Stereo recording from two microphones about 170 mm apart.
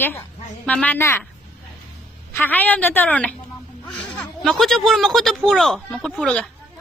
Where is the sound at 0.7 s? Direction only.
10° left (ahead or behind).